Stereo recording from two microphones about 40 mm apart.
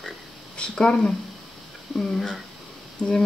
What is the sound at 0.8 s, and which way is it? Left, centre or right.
Speech, left.